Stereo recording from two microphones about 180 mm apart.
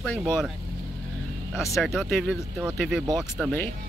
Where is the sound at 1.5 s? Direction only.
Centre (ahead or behind).